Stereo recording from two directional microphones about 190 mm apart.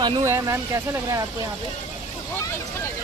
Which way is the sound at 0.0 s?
20° right (ahead or behind).